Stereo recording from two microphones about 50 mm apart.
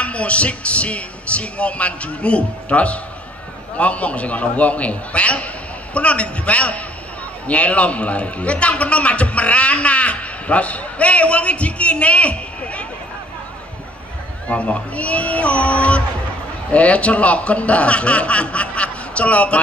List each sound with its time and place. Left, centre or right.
0.0 s a man's voice: left
14.5 s a man's voice: left